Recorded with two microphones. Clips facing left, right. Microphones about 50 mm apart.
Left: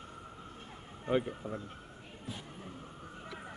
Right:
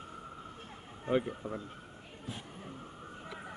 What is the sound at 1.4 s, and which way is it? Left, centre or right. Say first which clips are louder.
Speech: right 1 dB; right.